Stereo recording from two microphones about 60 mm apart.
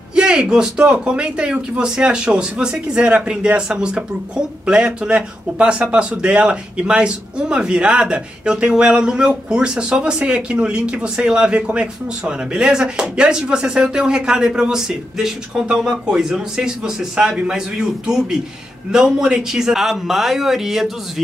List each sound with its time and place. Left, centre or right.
0.1 s speech: centre